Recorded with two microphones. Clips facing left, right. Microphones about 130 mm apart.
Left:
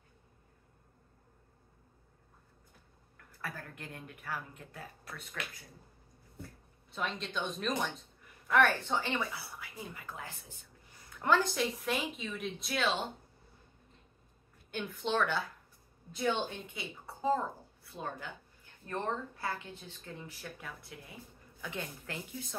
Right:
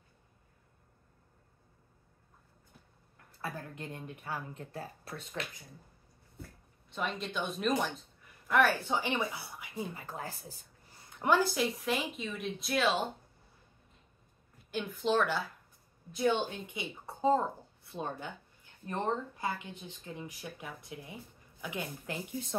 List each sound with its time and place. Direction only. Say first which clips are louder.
3.3 s speech: right 3 dB; 20° right (ahead or behind)
6.9 s speech: right 2 dB; 5° right (ahead or behind); by 9.8 s 20° right (ahead or behind)
9.9 s speech: right 4 dB; 35° right (ahead or behind)
11.1 s speech: right 1 dB; 10° right (ahead or behind)
14.7 s speech: right 3 dB; centre (ahead or behind)
16.3 s speech: right 2 dB; 20° right (ahead or behind)
18.9 s speech: right 2 dB; 15° right (ahead or behind)